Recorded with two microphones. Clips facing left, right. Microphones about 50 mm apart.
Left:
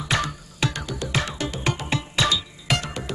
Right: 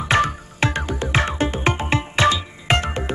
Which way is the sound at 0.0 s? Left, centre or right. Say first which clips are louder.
Right 7 dB; right.